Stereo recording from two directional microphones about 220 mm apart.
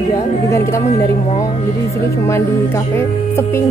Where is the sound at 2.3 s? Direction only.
10° left (ahead or behind).